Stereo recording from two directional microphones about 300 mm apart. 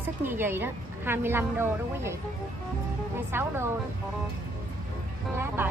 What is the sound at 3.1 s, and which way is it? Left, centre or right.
Speech, centre.